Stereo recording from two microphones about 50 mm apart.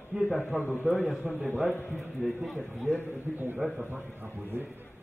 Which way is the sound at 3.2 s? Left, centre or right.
Right.